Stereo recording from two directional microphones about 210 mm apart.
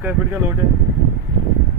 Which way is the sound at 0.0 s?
15° right (ahead or behind).